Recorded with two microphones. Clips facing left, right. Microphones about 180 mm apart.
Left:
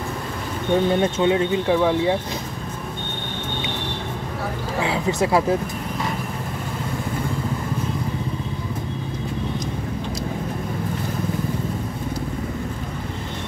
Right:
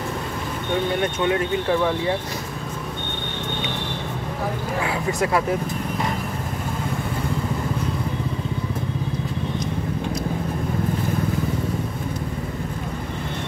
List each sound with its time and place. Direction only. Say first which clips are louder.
1.0 s speech: left 3 dB; 25° left (ahead or behind)
1.7 s speech: left 2 dB; 10° left (ahead or behind)
4.8 s a sound: left 3 dB; 25° left (ahead or behind)